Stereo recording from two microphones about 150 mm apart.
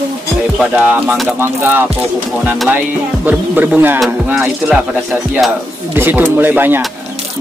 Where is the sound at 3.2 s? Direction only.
10° right (ahead or behind).